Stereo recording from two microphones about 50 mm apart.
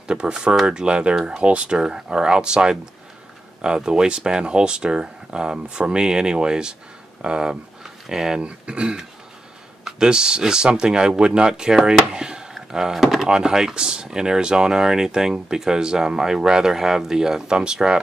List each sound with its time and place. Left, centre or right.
0.1 s speech: centre
8.4 s speech: right
12.5 s a sound: centre
13.3 s speech: centre